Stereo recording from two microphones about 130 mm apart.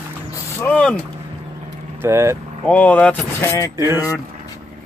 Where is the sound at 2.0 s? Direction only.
20° right (ahead or behind).